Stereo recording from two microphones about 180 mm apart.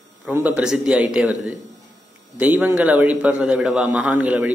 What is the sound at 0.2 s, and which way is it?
A man's voice, 10° right (ahead or behind).